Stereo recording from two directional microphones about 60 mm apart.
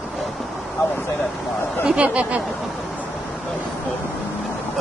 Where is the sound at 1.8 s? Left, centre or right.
Centre.